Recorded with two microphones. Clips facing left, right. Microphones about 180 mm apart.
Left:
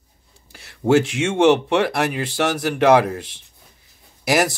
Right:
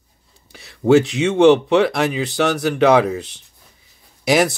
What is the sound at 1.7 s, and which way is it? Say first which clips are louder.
Speech: right 3 dB; 5° left (ahead or behind).